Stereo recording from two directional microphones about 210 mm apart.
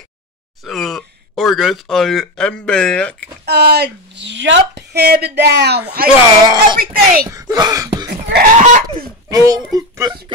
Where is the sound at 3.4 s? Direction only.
50° right (ahead or behind).